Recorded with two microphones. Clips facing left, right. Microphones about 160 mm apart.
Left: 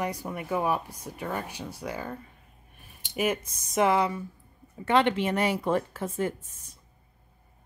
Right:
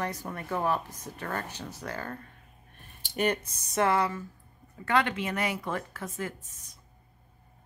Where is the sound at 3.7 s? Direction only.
15° left (ahead or behind).